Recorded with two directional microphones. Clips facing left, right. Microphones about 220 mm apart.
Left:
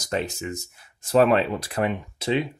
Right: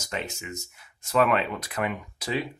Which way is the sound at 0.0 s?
35° left (ahead or behind).